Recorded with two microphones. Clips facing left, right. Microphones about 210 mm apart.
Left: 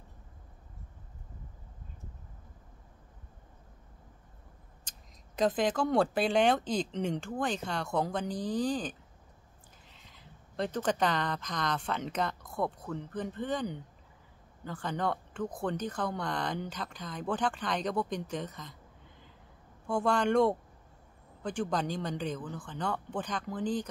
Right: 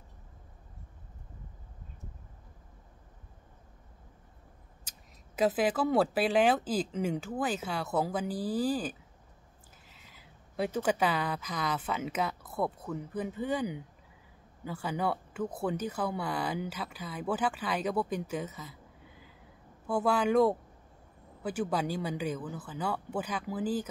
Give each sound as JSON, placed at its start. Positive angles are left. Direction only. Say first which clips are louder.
{"t": 4.8, "sound": "speech", "louder": "even", "side_deg": -5}